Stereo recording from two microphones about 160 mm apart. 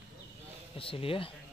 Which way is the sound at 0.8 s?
35° left (ahead or behind).